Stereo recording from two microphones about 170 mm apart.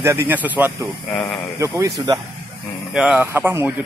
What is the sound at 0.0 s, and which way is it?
Speech, 10° right (ahead or behind).